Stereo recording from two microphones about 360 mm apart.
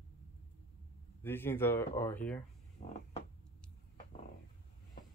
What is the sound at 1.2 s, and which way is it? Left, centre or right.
Speech, centre.